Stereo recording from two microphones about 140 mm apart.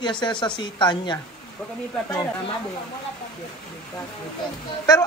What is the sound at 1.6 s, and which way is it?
Speech, 5° left (ahead or behind).